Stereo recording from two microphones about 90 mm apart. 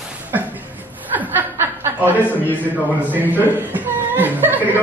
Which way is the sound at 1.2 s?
20° right (ahead or behind).